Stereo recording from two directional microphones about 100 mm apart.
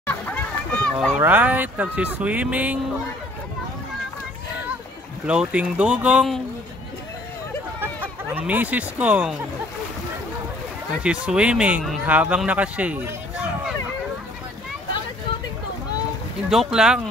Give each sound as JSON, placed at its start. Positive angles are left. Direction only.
{"t": 0.0, "sound": "a sound", "side_deg": 20}
{"t": 1.1, "sound": "speech", "side_deg": -20}
{"t": 5.2, "sound": "speech", "side_deg": -10}
{"t": 7.8, "sound": "speech", "side_deg": -20}
{"t": 11.0, "sound": "speech", "side_deg": -10}
{"t": 16.4, "sound": "speech", "side_deg": -5}